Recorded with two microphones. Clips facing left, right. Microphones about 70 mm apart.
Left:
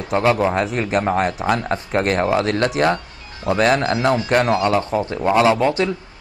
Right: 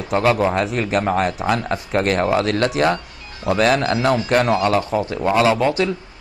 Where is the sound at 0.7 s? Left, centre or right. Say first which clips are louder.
Even; left.